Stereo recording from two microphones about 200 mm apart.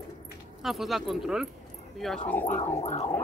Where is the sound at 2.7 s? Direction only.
35° left (ahead or behind).